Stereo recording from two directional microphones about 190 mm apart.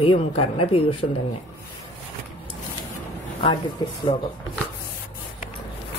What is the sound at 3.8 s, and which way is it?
Speech, 20° left (ahead or behind).